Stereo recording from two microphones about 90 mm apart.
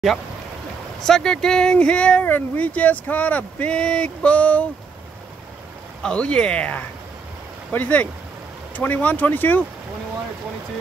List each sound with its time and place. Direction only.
1.0 s speech: 5° left (ahead or behind)
6.0 s speech: 10° left (ahead or behind)